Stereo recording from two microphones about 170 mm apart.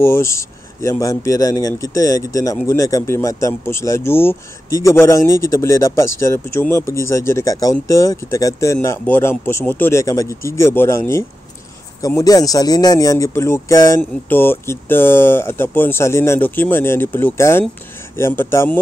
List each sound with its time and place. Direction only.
0.0 s speech: 15° left (ahead or behind)